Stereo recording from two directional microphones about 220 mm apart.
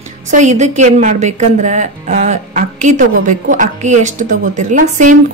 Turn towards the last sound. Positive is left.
turn(degrees=-35)  # may be behind; listen again after turning